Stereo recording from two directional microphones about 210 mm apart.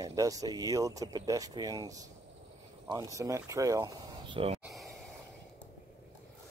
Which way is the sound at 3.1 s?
15° right (ahead or behind).